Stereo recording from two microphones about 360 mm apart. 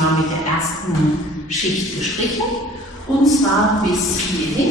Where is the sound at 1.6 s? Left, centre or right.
Centre.